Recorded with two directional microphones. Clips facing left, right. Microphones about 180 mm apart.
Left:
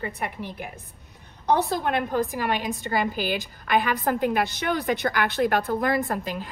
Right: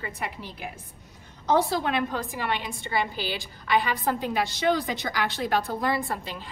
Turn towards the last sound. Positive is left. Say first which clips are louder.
# left 5 dB
turn(degrees=50)  # may be behind; listen again after turning